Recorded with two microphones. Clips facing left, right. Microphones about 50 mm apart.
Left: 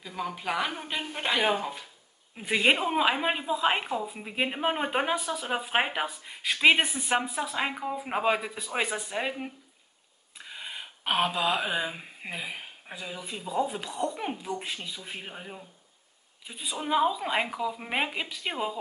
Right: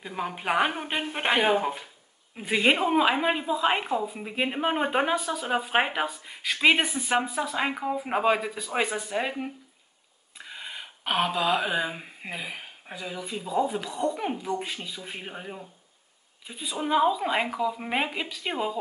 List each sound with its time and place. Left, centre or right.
0.0 s a woman's voice: right
2.3 s a woman's voice: centre
10.3 s a sound: centre
13.0 s a woman's voice: centre